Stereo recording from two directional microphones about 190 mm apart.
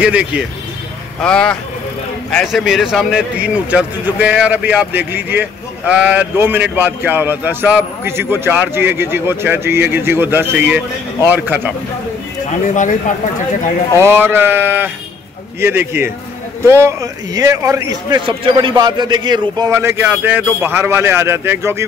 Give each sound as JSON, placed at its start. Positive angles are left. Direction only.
{"t": 0.0, "sound": "speech", "side_deg": -5}
{"t": 1.2, "sound": "a man's voice", "side_deg": 5}
{"t": 13.9, "sound": "a man's voice", "side_deg": -15}